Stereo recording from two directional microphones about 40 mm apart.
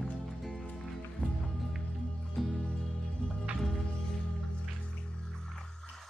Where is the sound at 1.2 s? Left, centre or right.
Left.